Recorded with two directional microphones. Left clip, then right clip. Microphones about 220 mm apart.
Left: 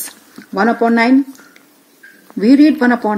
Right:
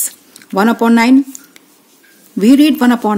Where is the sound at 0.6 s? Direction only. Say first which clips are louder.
Right 1 dB; 45° right (ahead or behind).